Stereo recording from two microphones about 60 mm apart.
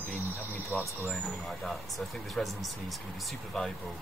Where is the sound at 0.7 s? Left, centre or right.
Right.